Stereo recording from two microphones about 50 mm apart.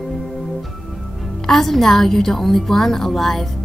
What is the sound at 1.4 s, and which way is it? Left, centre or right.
A woman's voice, centre.